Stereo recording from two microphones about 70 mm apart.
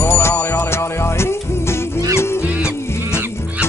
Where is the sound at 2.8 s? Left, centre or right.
Left.